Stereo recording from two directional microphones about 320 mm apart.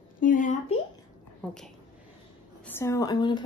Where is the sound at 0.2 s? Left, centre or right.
Left.